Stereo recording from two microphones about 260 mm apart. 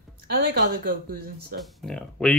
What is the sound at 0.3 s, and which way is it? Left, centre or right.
Speech, right.